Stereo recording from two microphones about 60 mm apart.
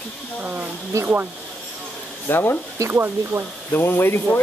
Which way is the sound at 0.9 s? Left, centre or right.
Right.